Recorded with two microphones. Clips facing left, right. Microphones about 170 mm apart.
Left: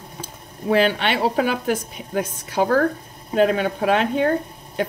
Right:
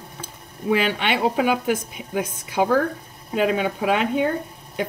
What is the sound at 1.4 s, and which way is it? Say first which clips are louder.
A woman's voice: even; 15° right (ahead or behind).